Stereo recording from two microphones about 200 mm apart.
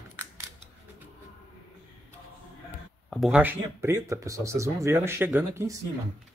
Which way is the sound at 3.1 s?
5° right (ahead or behind).